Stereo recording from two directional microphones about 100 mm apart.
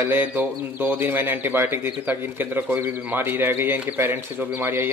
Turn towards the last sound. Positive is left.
turn(degrees=-25)  # may be behind; listen again after turning